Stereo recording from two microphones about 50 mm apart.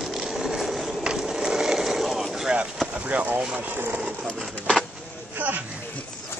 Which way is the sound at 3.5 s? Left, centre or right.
Right.